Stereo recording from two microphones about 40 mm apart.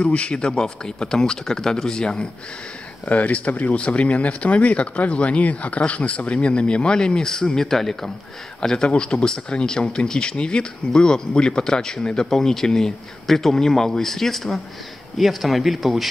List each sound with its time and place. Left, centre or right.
0.0 s speech: left
3.1 s speech: left; by 8.1 s centre
8.5 s speech: centre